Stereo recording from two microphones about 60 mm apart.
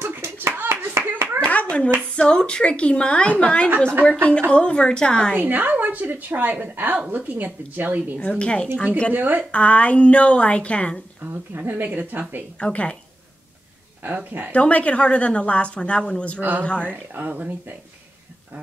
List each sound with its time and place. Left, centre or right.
0.0 s clapping: right
1.4 s clapping: left
2.1 s a woman's voice: centre
5.3 s a woman's voice: right
8.2 s a woman's voice: centre
9.1 s a woman's voice: right
9.5 s a woman's voice: left
11.2 s speech: right
12.5 s a woman's voice: centre
14.0 s speech: right
14.5 s a woman's voice: left
16.3 s speech: right
16.6 s a woman's voice: centre
16.9 s a woman's voice: right